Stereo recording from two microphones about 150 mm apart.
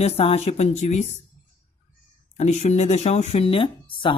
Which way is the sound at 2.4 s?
50° left (ahead or behind).